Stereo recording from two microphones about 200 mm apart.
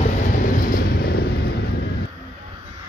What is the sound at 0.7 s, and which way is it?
Vehicle, 50° left (ahead or behind).